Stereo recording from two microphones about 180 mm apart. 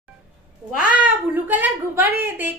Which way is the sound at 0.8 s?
10° right (ahead or behind).